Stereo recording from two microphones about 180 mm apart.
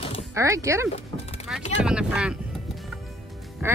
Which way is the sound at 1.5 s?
5° right (ahead or behind).